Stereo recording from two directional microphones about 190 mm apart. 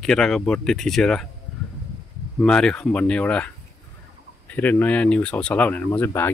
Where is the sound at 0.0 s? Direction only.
5° left (ahead or behind).